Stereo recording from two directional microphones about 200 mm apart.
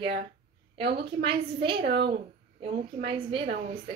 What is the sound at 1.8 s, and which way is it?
A woman's voice, 55° right (ahead or behind).